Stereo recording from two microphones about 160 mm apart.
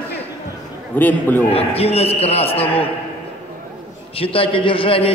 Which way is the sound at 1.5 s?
40° left (ahead or behind).